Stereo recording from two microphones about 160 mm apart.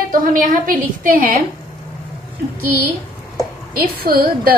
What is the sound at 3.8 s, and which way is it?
Speech, 70° right (ahead or behind).